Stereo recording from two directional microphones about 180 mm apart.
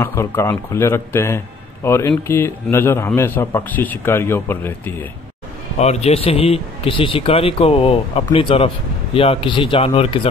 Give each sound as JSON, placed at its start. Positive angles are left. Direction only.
{"t": 0.0, "sound": "speech", "side_deg": 15}
{"t": 5.8, "sound": "a man's voice", "side_deg": 35}